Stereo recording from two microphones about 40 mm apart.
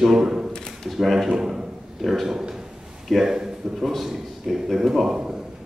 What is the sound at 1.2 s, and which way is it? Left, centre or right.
A man's voice, centre.